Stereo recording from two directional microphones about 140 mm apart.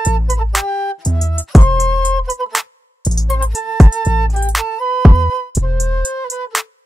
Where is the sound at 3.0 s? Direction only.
30° left (ahead or behind).